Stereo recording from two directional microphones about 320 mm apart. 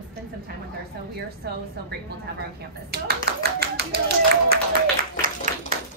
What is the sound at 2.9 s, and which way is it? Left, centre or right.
Speech, right.